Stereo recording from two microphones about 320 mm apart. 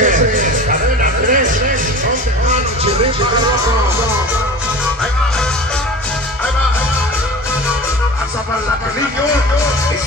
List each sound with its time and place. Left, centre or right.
0.0 s music: right